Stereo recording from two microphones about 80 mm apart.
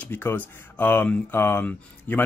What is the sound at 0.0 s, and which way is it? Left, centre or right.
Speech, left.